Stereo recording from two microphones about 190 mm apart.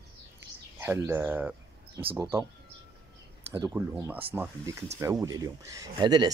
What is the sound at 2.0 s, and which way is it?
Speech, 30° right (ahead or behind).